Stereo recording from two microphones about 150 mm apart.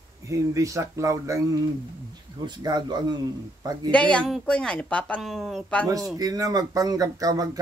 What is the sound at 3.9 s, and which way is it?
Speech, 5° left (ahead or behind).